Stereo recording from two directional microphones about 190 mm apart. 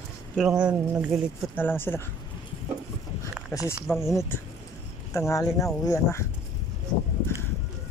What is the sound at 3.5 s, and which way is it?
Speech, 15° left (ahead or behind).